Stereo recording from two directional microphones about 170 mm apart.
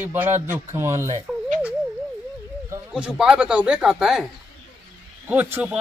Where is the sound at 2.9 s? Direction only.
5° right (ahead or behind).